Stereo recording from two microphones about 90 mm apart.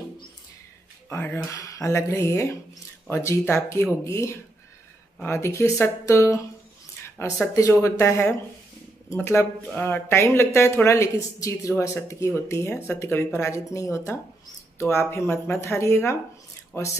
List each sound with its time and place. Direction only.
1.1 s speech: 30° left (ahead or behind)
1.4 s speech: 40° left (ahead or behind); by 16.9 s 25° left (ahead or behind)